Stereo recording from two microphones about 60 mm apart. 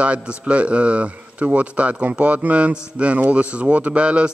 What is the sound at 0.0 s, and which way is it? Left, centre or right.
Speech, right.